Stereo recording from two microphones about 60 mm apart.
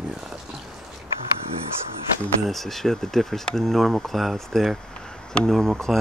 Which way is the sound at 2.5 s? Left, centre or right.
Centre.